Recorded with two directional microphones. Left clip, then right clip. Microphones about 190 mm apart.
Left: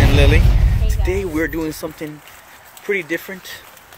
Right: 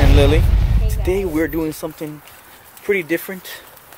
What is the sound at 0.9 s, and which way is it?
Speech, 15° right (ahead or behind).